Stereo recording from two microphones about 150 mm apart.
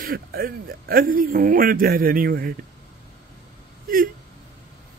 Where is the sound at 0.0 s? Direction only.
85° right.